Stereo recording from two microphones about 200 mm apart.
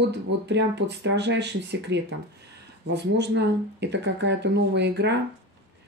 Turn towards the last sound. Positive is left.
turn(degrees=-60)  # may be behind; listen again after turning